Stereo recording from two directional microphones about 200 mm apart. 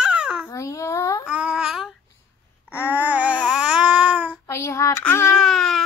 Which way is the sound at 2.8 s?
10° right (ahead or behind).